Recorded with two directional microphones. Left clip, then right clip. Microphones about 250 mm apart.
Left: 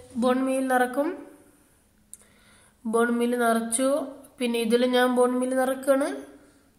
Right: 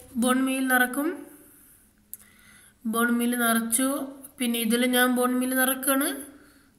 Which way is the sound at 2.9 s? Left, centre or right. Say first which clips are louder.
Left 2 dB; centre.